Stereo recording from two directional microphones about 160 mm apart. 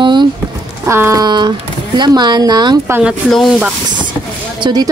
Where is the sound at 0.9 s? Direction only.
20° right (ahead or behind).